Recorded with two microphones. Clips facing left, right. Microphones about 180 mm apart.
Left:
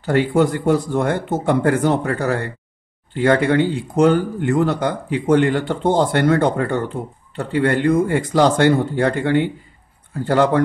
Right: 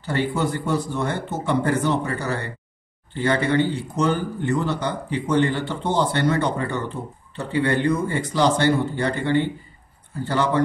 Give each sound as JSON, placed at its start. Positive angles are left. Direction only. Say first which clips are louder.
{"t": 0.0, "sound": "speech", "louder": "left 7 dB", "side_deg": 55}